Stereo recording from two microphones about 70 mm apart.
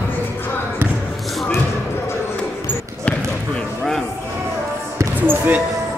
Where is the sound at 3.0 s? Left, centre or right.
Centre.